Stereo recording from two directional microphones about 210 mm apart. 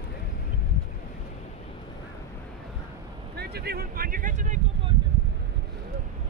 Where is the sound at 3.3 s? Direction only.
50° right (ahead or behind).